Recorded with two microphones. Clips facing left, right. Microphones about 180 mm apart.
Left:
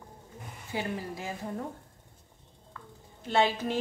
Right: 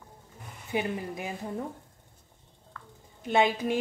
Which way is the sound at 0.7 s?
20° right (ahead or behind).